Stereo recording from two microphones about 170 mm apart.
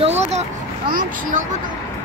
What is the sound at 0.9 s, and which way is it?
Speech, 55° right (ahead or behind).